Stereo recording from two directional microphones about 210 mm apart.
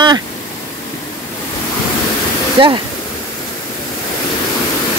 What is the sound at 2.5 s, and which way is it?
Speech, 25° right (ahead or behind).